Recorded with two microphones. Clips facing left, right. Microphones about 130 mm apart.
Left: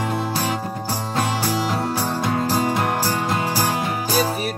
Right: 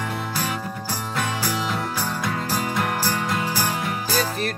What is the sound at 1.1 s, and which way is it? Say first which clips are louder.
Music: left 4 dB; 30° left (ahead or behind).